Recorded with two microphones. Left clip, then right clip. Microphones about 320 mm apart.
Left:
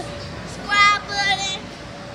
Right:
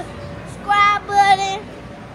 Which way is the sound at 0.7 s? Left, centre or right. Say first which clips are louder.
Right 2 dB; centre.